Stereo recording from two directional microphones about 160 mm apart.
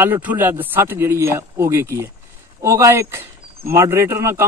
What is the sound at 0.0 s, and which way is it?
Speech, 10° right (ahead or behind).